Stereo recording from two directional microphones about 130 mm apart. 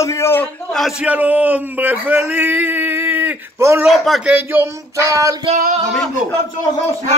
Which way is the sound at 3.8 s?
Centre (ahead or behind).